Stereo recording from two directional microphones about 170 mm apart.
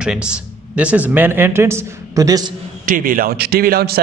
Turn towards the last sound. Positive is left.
turn(degrees=-60)  # may be behind; listen again after turning